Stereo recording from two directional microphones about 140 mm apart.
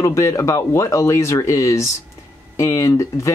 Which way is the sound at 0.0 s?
20° left (ahead or behind).